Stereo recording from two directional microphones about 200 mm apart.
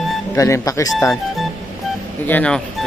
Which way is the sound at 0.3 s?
15° left (ahead or behind).